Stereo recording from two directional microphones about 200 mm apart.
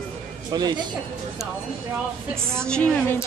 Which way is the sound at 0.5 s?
20° right (ahead or behind).